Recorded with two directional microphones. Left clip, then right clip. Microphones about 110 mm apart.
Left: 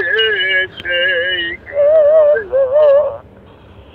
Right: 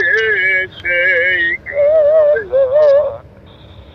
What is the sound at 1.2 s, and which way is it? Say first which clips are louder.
Male singing: right 4 dB; 5° left (ahead or behind).